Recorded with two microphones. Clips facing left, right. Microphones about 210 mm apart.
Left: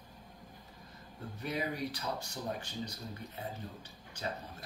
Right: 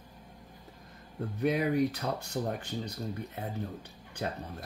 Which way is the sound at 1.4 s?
60° right (ahead or behind).